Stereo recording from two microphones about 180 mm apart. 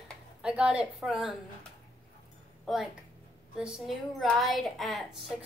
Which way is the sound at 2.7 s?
Centre (ahead or behind).